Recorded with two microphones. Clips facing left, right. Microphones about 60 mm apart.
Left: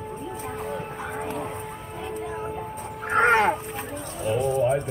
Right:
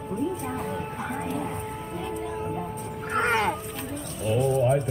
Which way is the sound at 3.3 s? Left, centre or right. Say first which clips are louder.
Left 4 dB; left.